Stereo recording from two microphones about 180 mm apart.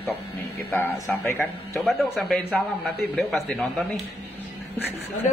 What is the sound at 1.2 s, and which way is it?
Speech, 15° left (ahead or behind).